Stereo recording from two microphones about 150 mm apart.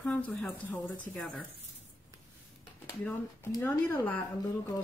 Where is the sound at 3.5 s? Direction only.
25° left (ahead or behind).